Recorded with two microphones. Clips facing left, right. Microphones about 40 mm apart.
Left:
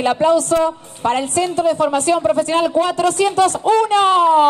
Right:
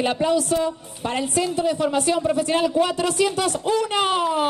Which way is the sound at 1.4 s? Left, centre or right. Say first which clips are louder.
Left 4 dB; left.